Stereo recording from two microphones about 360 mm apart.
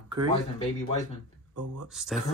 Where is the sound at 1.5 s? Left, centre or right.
Right.